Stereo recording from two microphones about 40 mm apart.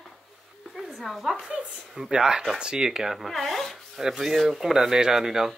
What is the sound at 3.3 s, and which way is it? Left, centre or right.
Speech, centre.